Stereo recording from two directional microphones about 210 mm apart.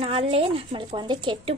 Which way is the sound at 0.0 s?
25° right (ahead or behind).